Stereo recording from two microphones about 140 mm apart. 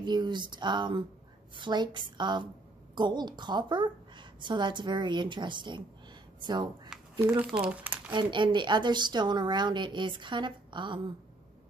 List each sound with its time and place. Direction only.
0.0 s a woman's voice: 30° right (ahead or behind)
7.2 s speech: 10° right (ahead or behind)
8.1 s a woman's voice: 35° right (ahead or behind)